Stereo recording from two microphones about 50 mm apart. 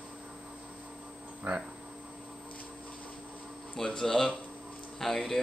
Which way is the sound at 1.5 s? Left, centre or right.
Right.